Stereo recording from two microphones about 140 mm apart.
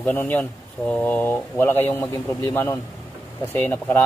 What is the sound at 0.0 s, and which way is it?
Speech, 10° left (ahead or behind).